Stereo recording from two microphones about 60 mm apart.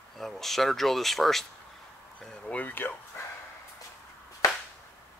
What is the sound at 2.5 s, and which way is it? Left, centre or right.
Speech, left.